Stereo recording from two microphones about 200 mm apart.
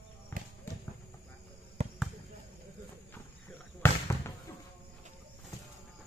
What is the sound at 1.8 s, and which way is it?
Basketball bounce, 35° right (ahead or behind).